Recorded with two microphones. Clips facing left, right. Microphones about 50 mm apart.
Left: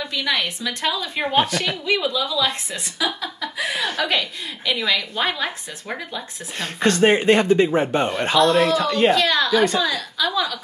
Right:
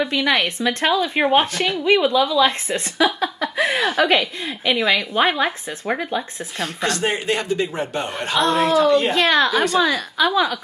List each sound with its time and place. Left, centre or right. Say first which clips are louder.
0.0 s speech: right 5 dB; right
7.0 s speech: left 10 dB; left
8.4 s a woman's voice: even; right